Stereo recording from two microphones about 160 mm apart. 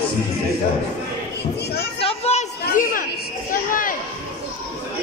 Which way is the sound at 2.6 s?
60° left (ahead or behind).